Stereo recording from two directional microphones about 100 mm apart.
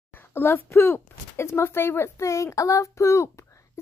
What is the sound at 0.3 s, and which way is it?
A child's voice, 20° left (ahead or behind).